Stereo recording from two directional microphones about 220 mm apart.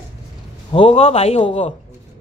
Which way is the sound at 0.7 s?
25° left (ahead or behind).